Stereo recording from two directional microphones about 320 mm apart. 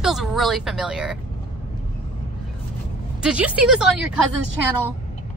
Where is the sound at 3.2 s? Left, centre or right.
Centre.